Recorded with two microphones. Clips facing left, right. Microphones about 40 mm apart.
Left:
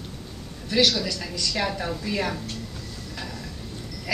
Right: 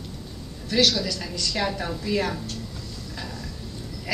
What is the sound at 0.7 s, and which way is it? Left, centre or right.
Speech, centre.